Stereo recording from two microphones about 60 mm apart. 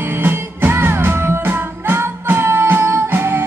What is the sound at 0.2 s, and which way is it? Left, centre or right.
Music, right.